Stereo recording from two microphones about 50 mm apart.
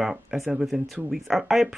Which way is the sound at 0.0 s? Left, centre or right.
Centre.